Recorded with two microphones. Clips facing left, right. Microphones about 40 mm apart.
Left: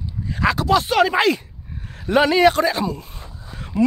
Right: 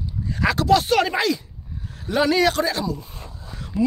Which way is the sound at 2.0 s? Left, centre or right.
Left.